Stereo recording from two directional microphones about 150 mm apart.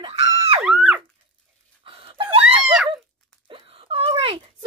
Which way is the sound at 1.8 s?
40° right (ahead or behind).